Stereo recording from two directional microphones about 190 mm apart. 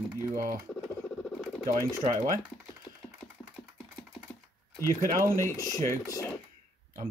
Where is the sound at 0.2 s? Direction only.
15° right (ahead or behind).